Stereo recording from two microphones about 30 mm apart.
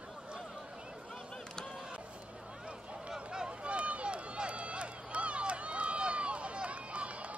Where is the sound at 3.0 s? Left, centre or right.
Right.